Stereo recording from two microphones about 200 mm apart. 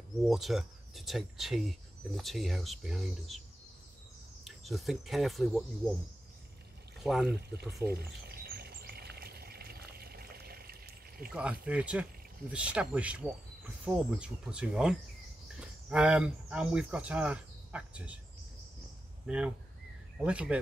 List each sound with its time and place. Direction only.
0.3 s speech: centre (ahead or behind)
4.5 s speech: centre (ahead or behind)
7.0 s speech: centre (ahead or behind)
7.4 s bird: 55° right (ahead or behind)
11.3 s speech: 5° right (ahead or behind)
19.2 s speech: 5° right (ahead or behind)